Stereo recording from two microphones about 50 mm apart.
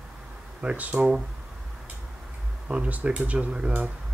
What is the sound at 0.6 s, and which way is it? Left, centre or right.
Speech, right.